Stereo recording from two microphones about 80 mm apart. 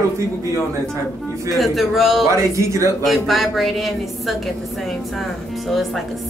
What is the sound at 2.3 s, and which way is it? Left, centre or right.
Speech, right.